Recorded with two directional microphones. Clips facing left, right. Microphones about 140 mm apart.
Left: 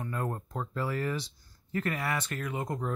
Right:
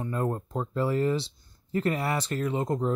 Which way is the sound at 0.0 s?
25° right (ahead or behind).